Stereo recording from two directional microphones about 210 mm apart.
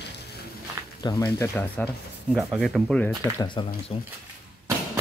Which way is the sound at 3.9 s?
30° left (ahead or behind).